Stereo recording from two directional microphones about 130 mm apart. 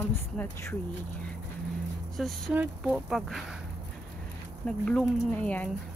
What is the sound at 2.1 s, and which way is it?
Speech, centre (ahead or behind).